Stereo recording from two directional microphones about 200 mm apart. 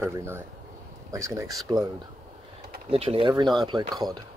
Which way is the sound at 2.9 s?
30° right (ahead or behind).